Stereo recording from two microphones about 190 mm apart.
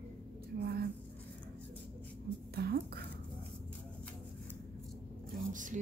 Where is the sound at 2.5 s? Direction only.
55° right (ahead or behind).